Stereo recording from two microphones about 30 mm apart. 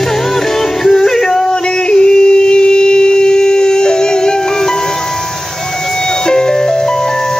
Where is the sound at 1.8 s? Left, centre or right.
Left.